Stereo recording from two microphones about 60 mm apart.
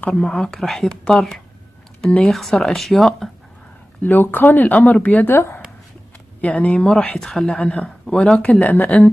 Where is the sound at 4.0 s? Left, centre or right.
Left.